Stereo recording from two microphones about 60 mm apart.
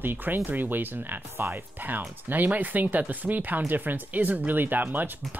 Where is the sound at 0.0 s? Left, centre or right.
Right.